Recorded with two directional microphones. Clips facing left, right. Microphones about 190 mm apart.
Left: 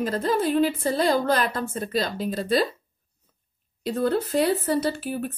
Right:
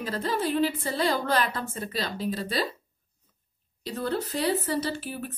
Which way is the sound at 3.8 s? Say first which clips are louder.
Left 6 dB; 50° left (ahead or behind).